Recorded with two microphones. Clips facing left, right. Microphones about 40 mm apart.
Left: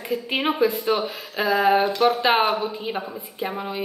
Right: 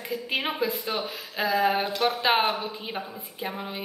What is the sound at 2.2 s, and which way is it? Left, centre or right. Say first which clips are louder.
Speech: left 4 dB; centre.